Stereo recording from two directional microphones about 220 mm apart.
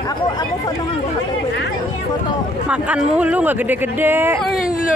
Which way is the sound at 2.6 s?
5° right (ahead or behind).